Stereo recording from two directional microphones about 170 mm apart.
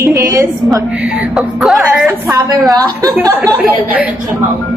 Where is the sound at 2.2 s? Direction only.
20° right (ahead or behind).